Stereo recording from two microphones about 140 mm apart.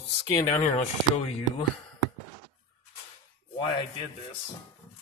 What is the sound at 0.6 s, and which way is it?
Speech, 50° left (ahead or behind).